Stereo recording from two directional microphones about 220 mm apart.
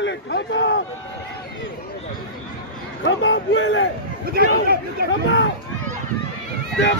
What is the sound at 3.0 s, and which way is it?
Speech, 60° left (ahead or behind).